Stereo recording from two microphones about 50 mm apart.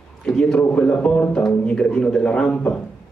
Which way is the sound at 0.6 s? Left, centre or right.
Left.